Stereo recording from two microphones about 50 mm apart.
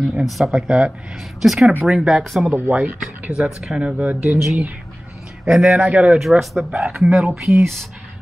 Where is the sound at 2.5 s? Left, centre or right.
Right.